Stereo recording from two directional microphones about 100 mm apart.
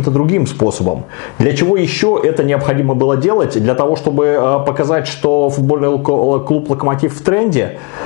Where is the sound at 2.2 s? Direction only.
10° left (ahead or behind).